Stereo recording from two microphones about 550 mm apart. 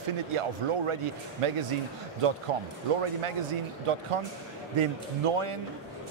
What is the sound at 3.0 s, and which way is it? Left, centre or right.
A man's voice, right.